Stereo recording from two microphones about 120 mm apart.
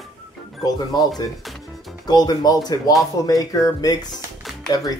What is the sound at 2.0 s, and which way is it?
Speech, 35° left (ahead or behind).